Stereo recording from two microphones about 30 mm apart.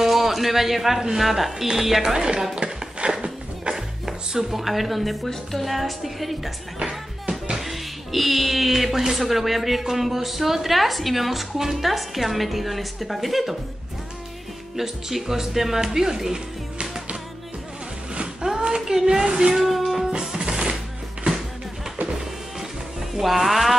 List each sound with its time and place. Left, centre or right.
0.0 s a sound: centre
1.2 s speech: centre
2.0 s speech: right
3.1 s a sound: right
3.7 s music: centre
5.3 s speech: centre
7.5 s music: centre
9.1 s speech: centre
14.8 s speech: centre
18.7 s speech: centre
19.6 s music: centre
20.1 s music: right
23.1 s speech: centre